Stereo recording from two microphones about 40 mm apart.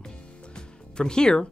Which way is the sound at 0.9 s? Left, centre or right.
Centre.